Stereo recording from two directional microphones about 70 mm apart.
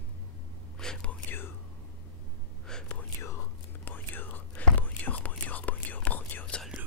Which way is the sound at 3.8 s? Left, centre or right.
Left.